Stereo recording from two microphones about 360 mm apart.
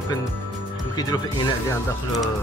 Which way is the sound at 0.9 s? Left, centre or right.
Centre.